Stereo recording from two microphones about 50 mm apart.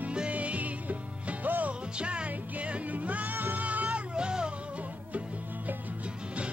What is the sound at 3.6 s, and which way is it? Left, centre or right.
Music, right.